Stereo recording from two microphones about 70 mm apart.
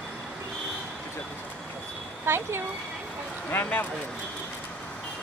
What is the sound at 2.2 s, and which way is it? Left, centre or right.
Speech, right.